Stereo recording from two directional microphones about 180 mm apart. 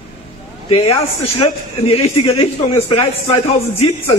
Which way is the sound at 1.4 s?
35° left (ahead or behind).